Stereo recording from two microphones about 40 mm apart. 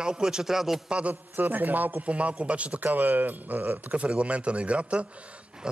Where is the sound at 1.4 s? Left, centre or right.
Right.